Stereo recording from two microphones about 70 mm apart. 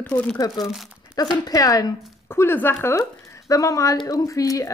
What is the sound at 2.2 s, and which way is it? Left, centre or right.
Speech, left.